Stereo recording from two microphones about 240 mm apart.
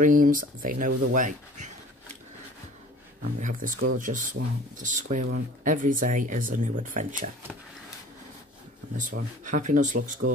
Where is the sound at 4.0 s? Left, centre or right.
Right.